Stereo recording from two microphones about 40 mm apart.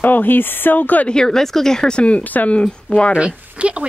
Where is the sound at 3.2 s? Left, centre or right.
Right.